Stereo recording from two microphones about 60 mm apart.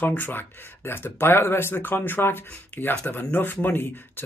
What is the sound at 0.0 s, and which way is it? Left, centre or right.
Speech, left.